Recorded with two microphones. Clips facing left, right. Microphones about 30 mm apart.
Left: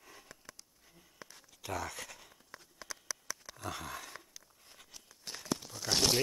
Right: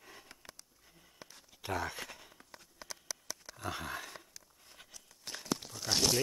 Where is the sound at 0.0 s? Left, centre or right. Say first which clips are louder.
Even; centre.